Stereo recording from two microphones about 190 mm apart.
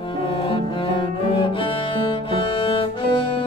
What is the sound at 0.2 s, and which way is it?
Cello, 25° left (ahead or behind).